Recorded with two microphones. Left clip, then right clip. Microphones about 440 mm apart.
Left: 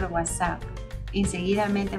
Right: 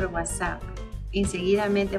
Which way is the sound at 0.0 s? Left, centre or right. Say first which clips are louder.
Left 2 dB; centre.